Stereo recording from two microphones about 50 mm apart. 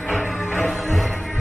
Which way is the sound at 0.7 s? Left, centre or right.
Centre.